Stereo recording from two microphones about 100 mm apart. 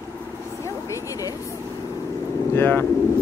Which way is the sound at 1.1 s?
35° left (ahead or behind).